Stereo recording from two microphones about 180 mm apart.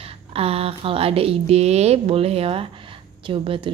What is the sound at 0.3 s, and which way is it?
A woman's voice, 35° right (ahead or behind).